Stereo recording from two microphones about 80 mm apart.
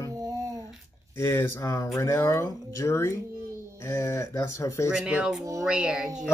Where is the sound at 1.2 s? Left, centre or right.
Left.